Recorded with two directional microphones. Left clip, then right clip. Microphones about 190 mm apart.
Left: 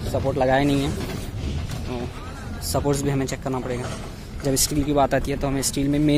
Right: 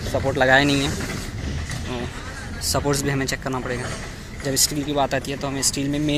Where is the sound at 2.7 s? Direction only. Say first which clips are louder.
Even; 15° left (ahead or behind).